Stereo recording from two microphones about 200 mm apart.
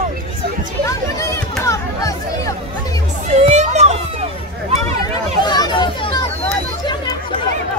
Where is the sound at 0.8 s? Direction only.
15° left (ahead or behind).